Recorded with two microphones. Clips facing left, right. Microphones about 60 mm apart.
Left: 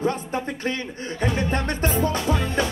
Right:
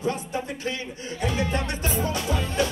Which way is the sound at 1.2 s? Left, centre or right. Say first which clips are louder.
Left 2 dB; left.